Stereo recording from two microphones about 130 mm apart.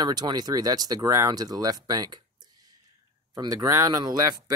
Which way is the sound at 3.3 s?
30° right (ahead or behind).